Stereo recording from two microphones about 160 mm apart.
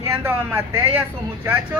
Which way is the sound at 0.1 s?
15° right (ahead or behind).